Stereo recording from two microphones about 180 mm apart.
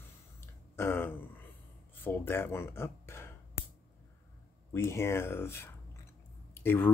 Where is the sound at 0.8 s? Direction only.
15° left (ahead or behind).